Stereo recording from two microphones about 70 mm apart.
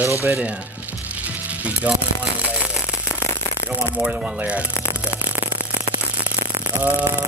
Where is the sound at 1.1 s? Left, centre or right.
Right.